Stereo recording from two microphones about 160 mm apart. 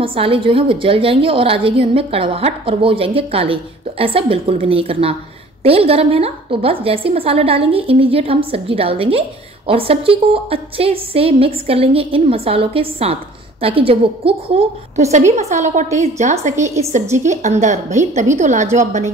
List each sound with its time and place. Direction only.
0.0 s a woman's voice: 35° right (ahead or behind)
16.6 s a woman's voice: 20° right (ahead or behind)
17.2 s a woman's voice: 50° right (ahead or behind)